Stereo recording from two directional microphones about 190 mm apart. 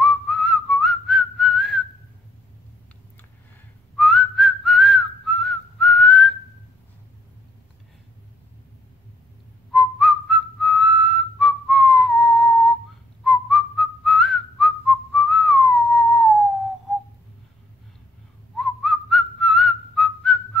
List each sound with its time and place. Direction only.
0.0 s whistling: centre (ahead or behind)
3.9 s whistling: centre (ahead or behind)
9.7 s whistling: centre (ahead or behind)
18.6 s whistling: centre (ahead or behind)